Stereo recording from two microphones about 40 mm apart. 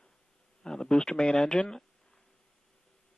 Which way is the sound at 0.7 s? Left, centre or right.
Centre.